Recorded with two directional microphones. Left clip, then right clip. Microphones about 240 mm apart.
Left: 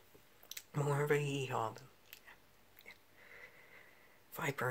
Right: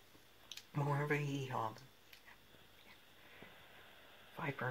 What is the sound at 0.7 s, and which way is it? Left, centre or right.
Speech, left.